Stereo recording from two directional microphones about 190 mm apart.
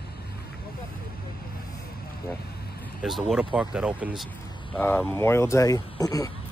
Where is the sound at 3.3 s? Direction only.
5° right (ahead or behind).